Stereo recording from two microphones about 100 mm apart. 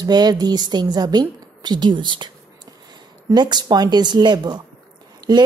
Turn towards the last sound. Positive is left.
turn(degrees=-50)  # may be behind; listen again after turning